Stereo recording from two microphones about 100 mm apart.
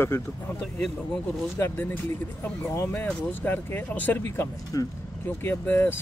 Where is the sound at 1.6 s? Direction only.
20° left (ahead or behind).